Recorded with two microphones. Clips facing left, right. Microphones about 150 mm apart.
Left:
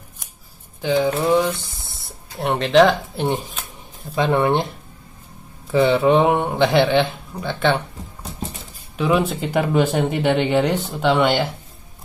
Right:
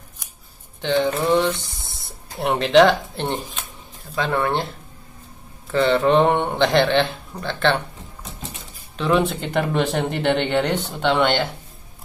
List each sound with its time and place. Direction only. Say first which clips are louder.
0.7 s speech: left 1 dB; 5° left (ahead or behind)
4.1 s speech: left 4 dB; 20° left (ahead or behind)
5.7 s speech: left 2 dB; 10° left (ahead or behind)
8.9 s speech: left 1 dB; 5° left (ahead or behind)